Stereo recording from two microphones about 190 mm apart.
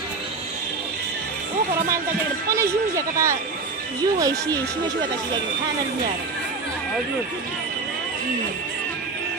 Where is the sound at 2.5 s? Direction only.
15° right (ahead or behind).